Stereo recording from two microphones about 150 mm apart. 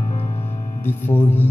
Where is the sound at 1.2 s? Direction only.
15° left (ahead or behind).